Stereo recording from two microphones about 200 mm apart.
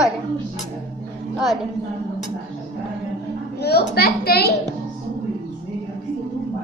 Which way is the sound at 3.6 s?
50° left (ahead or behind).